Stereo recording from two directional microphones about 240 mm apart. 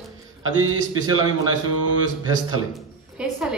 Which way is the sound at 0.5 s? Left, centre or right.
Right.